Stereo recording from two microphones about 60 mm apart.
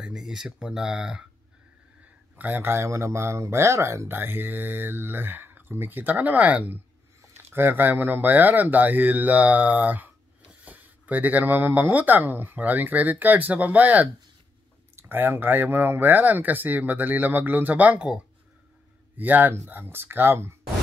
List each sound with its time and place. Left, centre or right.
0.0 s speech: centre
2.3 s speech: right
2.7 s speech: right
4.1 s speech: right
7.2 s speech: right
15.0 s speech: right
19.1 s speech: right